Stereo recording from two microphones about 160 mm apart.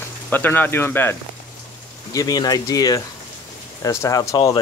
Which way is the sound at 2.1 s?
25° left (ahead or behind).